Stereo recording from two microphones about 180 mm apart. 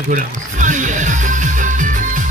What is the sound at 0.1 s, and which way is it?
Music, 45° right (ahead or behind).